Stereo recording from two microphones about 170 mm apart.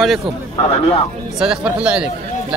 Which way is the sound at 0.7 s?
35° left (ahead or behind).